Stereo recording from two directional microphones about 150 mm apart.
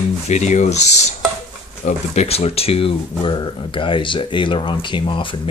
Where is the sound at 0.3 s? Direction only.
50° left (ahead or behind).